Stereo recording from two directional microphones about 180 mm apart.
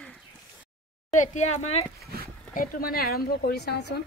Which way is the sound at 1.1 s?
45° left (ahead or behind).